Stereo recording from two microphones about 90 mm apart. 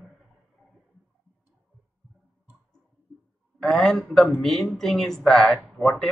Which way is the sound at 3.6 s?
5° left (ahead or behind).